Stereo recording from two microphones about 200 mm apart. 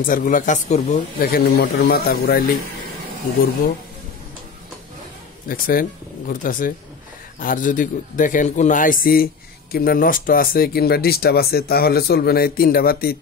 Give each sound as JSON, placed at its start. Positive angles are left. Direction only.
{"t": 0.0, "sound": "speech", "side_deg": 40}
{"t": 1.2, "sound": "a man's voice", "side_deg": 50}
{"t": 5.5, "sound": "a man's voice", "side_deg": 45}